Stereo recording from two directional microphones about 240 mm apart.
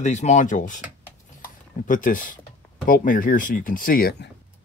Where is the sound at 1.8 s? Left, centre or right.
Left.